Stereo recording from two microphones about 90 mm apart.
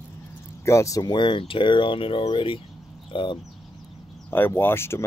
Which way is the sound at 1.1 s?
60° left (ahead or behind).